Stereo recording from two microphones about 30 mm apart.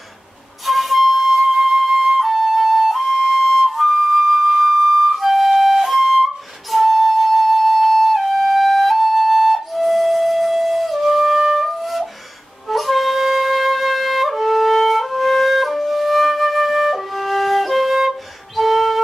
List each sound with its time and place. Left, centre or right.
0.7 s flute: centre
18.6 s music: centre